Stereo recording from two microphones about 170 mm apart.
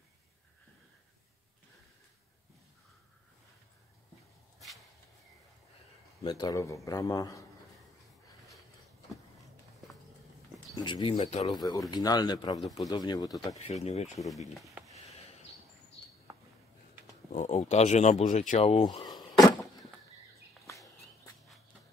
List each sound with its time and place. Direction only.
6.2 s a man's voice: 25° left (ahead or behind)
10.8 s speech: 30° left (ahead or behind)
11.1 s speech: 45° left (ahead or behind)
11.4 s a man's voice: 25° left (ahead or behind)
12.5 s speech: centre (ahead or behind)
12.8 s a man's voice: 25° left (ahead or behind)
13.6 s speech: 40° left (ahead or behind)
17.3 s speech: 45° left (ahead or behind)
18.3 s door: 50° left (ahead or behind); by 19.8 s 20° left (ahead or behind)